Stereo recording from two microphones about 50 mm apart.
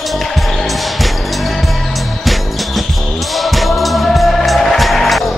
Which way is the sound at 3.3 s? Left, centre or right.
Centre.